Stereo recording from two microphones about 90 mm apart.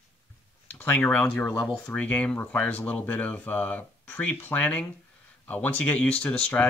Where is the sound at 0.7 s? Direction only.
20° left (ahead or behind).